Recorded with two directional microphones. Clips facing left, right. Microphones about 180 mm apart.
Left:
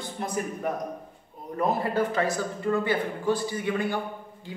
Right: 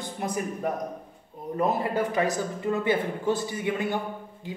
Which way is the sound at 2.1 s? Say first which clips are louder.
Right 1 dB; 15° right (ahead or behind).